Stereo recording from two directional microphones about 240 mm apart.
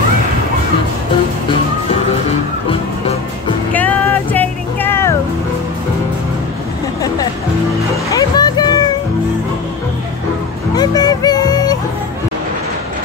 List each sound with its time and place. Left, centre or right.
3.7 s vehicle: centre
8.1 s music: centre
10.8 s music: centre